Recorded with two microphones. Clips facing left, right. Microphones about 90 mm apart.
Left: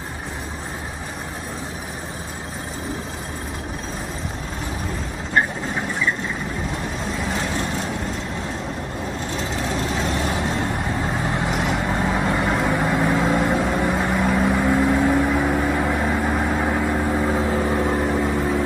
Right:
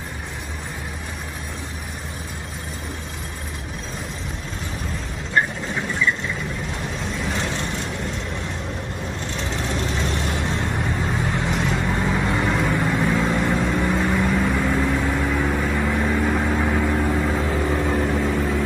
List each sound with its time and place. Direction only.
11.3 s vehicle: 15° left (ahead or behind)
12.6 s vehicle: 15° left (ahead or behind)